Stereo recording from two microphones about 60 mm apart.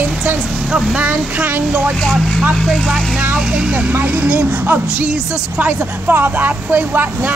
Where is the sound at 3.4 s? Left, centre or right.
Centre; by 4.8 s right.